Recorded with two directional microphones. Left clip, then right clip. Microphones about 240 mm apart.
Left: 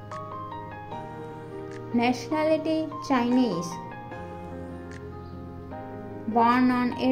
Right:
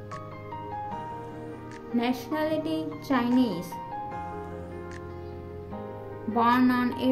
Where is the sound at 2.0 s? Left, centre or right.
Centre.